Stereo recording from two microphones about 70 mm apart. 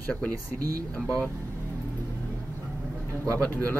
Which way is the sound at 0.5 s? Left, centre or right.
Right.